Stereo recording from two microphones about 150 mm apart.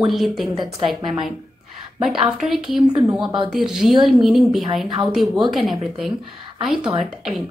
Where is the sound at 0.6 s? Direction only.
30° right (ahead or behind).